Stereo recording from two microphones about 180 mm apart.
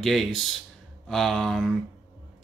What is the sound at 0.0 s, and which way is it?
Speech, centre (ahead or behind).